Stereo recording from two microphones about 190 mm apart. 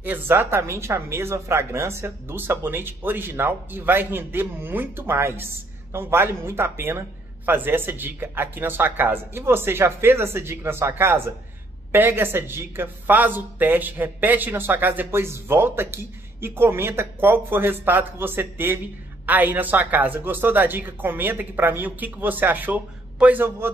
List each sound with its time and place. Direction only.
0.0 s speech: 10° right (ahead or behind)